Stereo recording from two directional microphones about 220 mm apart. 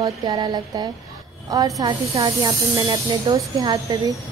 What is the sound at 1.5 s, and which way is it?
A woman's voice, 15° right (ahead or behind).